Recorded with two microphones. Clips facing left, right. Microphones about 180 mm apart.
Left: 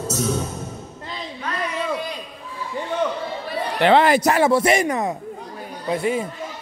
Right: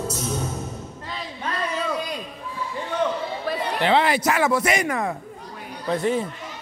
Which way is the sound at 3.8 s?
50° left (ahead or behind).